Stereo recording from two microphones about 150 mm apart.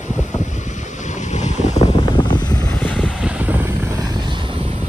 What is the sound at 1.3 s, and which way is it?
Boat, 50° left (ahead or behind).